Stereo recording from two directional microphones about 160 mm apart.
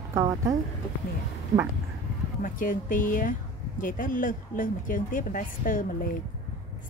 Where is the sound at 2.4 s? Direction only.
60° left (ahead or behind).